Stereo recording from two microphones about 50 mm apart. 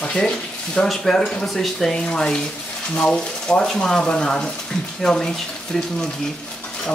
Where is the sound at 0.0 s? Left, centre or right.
Centre.